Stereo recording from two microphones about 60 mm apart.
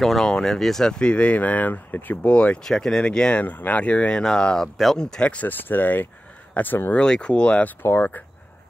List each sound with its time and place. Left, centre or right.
0.0 s speech: centre
2.6 s speech: centre
3.4 s speech: left
5.5 s speech: left
6.9 s speech: centre
7.8 s speech: left